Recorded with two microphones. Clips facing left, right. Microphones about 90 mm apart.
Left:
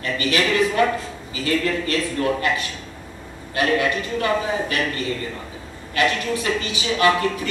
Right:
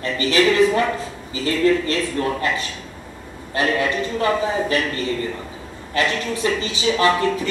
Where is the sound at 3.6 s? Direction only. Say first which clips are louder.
Even; 30° right (ahead or behind).